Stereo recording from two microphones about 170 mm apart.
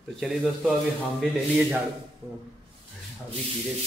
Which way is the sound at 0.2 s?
Centre (ahead or behind).